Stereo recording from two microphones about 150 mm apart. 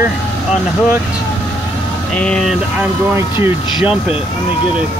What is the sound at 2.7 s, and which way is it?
Speech, 10° right (ahead or behind).